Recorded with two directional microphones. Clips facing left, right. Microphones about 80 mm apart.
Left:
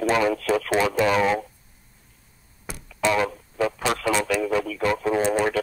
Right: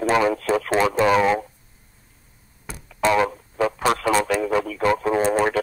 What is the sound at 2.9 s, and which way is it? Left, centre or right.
Radio, right.